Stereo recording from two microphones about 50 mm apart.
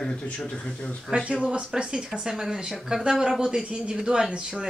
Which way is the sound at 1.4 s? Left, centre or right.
Right.